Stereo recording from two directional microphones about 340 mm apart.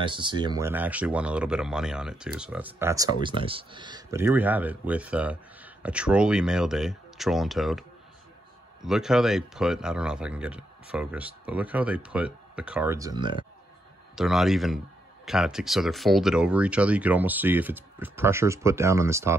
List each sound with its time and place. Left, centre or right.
0.0 s speech: centre
8.8 s speech: centre
14.1 s speech: centre